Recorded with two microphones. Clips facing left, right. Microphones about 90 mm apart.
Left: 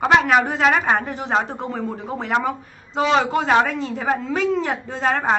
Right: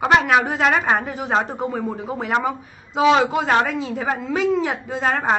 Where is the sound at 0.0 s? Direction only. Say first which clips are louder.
Even; centre (ahead or behind).